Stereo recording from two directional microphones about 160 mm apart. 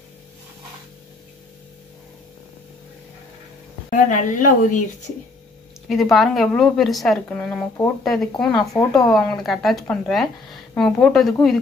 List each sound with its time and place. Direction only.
3.9 s a woman's voice: 55° left (ahead or behind)
5.9 s a woman's voice: centre (ahead or behind)